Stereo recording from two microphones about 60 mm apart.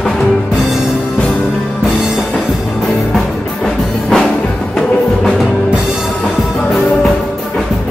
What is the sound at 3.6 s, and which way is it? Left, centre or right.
Music, centre.